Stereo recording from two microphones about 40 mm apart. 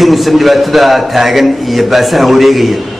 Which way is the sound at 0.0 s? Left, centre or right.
Centre.